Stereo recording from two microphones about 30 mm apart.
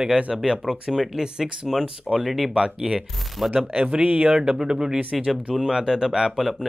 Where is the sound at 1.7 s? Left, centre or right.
Centre.